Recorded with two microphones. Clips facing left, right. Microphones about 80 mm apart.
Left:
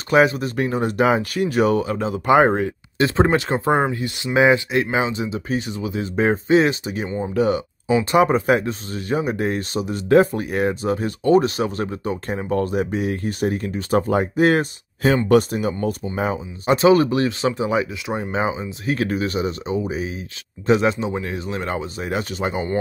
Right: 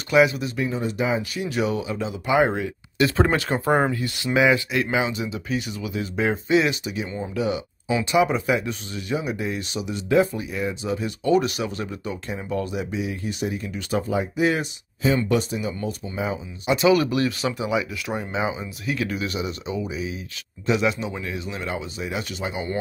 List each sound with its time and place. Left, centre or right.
0.1 s speech: left
0.6 s speech: left
3.2 s speech: left
7.3 s speech: left
18.0 s speech: left
18.3 s speech: left